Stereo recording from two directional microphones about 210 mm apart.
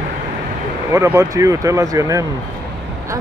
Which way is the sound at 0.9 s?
10° right (ahead or behind).